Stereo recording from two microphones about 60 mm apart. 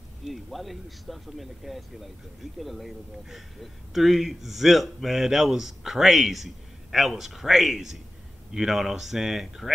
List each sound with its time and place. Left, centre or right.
0.2 s speech: centre